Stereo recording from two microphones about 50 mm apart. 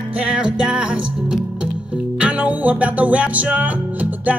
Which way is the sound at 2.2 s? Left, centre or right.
Right.